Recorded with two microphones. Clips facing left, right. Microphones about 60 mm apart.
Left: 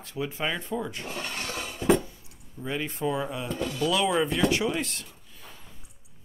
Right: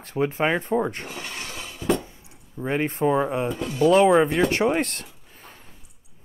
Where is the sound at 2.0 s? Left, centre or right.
Right.